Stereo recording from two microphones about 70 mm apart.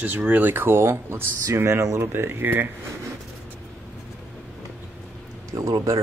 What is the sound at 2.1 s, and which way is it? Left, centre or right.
Speech, right.